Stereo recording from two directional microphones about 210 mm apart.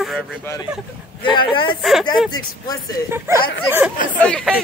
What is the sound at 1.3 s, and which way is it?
Speech, 20° left (ahead or behind).